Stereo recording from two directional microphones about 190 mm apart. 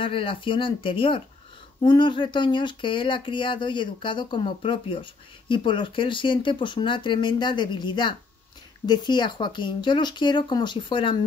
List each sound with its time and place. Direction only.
0.0 s speech: 25° left (ahead or behind)